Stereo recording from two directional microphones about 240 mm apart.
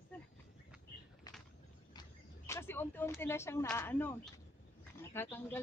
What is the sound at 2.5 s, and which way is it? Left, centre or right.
Speech, centre.